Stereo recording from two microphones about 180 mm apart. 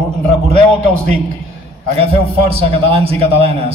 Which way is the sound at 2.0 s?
35° right (ahead or behind).